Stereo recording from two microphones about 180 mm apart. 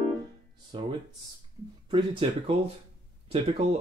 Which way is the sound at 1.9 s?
25° right (ahead or behind).